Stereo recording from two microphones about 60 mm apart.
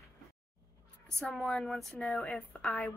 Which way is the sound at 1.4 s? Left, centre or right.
Centre.